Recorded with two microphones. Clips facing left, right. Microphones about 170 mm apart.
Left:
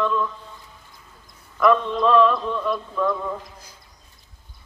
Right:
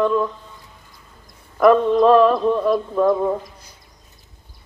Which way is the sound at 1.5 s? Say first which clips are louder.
Right 6 dB; 45° right (ahead or behind).